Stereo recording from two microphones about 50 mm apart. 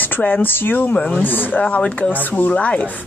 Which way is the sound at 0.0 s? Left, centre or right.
Left.